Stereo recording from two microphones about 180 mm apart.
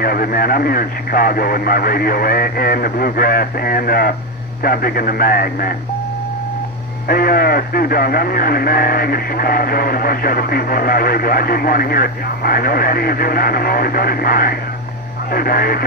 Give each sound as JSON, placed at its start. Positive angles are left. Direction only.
{"t": 0.0, "sound": "speech", "side_deg": 55}
{"t": 7.1, "sound": "speech", "side_deg": 55}